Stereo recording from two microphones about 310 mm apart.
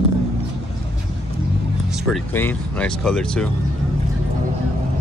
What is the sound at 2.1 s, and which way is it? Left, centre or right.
Speech, centre.